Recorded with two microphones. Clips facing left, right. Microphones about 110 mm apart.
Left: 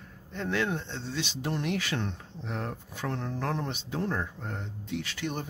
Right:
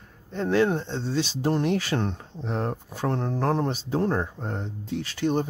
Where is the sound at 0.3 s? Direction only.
35° right (ahead or behind).